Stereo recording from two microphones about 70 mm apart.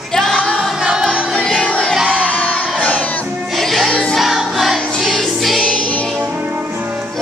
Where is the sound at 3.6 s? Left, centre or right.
Centre.